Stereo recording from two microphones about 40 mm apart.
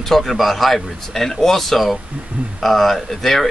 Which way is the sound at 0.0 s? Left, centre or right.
Centre.